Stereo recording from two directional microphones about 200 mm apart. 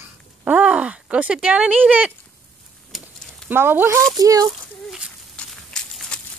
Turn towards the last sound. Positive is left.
turn(degrees=5)  # may be behind; listen again after turning